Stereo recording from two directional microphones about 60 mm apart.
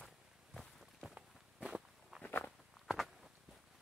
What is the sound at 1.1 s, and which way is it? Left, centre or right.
Walk, centre.